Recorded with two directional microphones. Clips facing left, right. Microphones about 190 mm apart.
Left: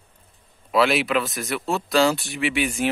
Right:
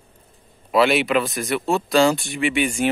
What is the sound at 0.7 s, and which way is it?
Speech, centre (ahead or behind).